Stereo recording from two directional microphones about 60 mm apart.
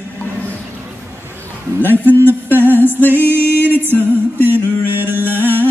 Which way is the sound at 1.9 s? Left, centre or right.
Right.